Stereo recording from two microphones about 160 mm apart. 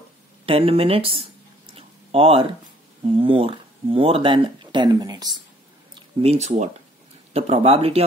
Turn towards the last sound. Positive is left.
turn(degrees=-40)  # may be behind; listen again after turning